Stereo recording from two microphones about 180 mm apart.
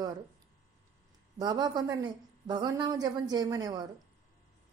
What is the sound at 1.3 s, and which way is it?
Speech, 20° right (ahead or behind).